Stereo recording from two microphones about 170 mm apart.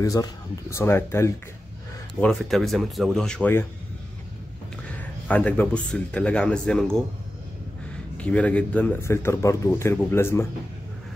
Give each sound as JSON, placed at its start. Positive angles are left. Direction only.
{"t": 0.0, "sound": "speech", "side_deg": 20}
{"t": 2.1, "sound": "speech", "side_deg": 5}
{"t": 4.9, "sound": "speech", "side_deg": 10}
{"t": 8.2, "sound": "speech", "side_deg": 5}